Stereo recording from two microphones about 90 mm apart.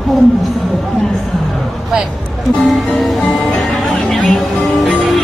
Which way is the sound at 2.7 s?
Centre (ahead or behind).